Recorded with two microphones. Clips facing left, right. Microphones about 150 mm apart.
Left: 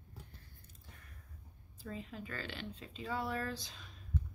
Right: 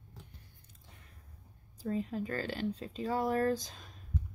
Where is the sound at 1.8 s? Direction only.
40° right (ahead or behind).